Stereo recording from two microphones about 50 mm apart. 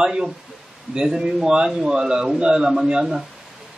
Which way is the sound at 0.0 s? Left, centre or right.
Centre.